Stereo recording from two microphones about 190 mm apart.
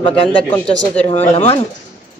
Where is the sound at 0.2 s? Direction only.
30° left (ahead or behind).